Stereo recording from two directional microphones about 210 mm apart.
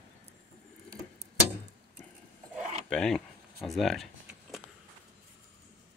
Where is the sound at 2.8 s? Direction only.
5° left (ahead or behind).